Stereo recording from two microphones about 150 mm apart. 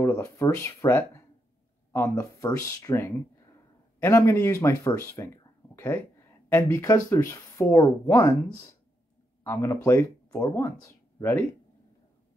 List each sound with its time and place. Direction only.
0.0 s speech: 15° left (ahead or behind)
9.4 s speech: 20° left (ahead or behind)